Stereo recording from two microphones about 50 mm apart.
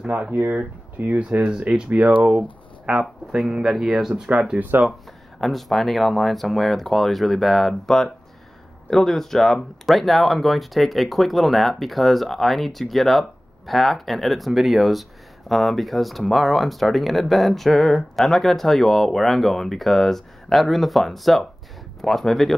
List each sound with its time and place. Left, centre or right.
0.0 s speech: right; by 4.1 s centre
4.6 s speech: right
5.4 s speech: centre